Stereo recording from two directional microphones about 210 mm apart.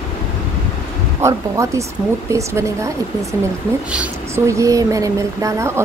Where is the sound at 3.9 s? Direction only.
15° right (ahead or behind).